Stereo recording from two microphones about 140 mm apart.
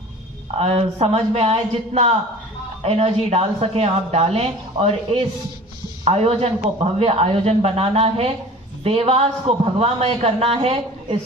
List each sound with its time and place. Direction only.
0.6 s a woman's voice: 45° right (ahead or behind)